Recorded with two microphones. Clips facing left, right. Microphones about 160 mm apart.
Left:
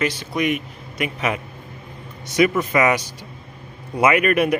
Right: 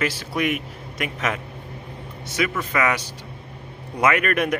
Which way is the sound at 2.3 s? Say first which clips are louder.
Left 7 dB; 20° left (ahead or behind).